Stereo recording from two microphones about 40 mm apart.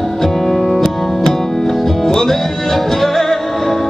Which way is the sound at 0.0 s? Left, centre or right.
Centre.